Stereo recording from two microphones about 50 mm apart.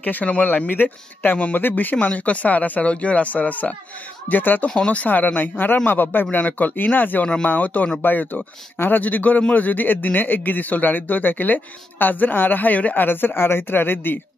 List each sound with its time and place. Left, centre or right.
0.0 s a man's voice: left
4.6 s speech: centre
4.9 s a man's voice: left